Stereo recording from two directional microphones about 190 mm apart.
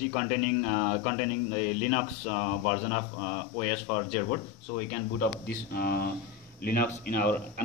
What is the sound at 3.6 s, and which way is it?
Speech, 40° left (ahead or behind).